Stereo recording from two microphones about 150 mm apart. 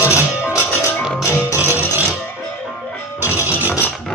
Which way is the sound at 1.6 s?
10° right (ahead or behind).